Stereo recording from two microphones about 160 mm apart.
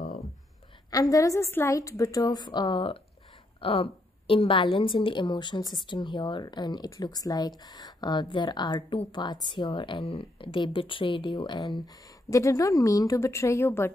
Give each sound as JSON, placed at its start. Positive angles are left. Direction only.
{"t": 0.8, "sound": "a woman's voice", "side_deg": 20}